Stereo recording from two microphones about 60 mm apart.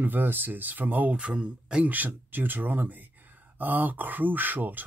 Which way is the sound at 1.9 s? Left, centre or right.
Right.